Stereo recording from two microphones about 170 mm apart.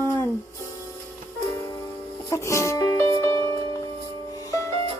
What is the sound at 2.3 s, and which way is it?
Music, 15° left (ahead or behind).